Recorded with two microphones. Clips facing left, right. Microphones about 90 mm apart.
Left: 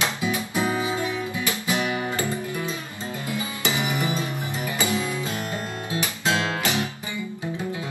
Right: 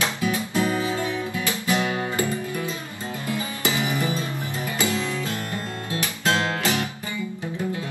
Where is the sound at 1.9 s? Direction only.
25° right (ahead or behind).